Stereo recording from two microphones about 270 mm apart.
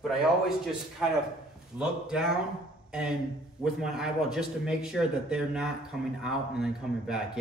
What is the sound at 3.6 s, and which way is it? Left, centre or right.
A man's voice, centre.